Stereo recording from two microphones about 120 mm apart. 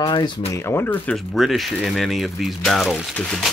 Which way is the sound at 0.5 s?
20° left (ahead or behind).